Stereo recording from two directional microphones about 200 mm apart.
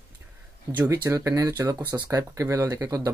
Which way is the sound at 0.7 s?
10° right (ahead or behind).